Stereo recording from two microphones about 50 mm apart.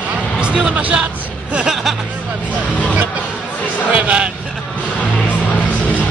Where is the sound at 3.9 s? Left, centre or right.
Right.